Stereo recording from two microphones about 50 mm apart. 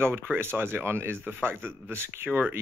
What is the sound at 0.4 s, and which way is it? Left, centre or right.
Speech, right.